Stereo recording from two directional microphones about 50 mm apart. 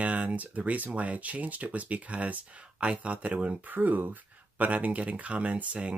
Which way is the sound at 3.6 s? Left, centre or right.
Right.